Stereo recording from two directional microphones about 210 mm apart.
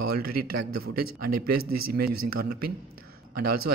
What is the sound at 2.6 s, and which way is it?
Speech, 45° right (ahead or behind).